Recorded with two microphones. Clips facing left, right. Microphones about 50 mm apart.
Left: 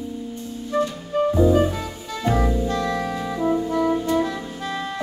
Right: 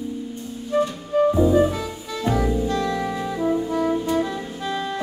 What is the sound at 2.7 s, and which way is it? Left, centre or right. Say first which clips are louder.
Music: even; left.